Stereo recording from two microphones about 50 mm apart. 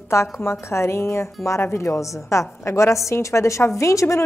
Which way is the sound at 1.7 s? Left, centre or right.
Left.